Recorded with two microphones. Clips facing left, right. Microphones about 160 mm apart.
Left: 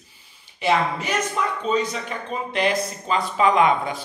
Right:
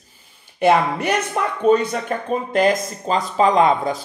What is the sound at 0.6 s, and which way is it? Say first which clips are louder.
Speech: right 5 dB; 55° right (ahead or behind).